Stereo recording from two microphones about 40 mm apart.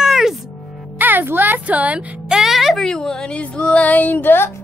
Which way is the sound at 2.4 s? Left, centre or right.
Centre.